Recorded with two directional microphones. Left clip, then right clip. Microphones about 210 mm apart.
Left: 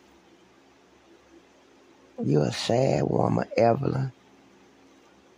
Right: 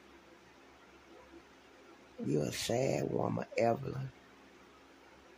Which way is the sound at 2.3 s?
25° left (ahead or behind).